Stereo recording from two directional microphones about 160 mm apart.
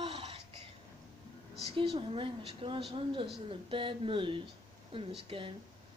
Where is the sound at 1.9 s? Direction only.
35° right (ahead or behind).